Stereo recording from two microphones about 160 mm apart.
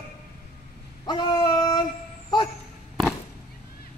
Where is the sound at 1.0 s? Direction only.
25° left (ahead or behind).